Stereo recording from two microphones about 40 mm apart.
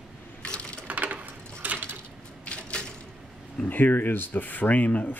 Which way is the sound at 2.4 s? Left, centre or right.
Left.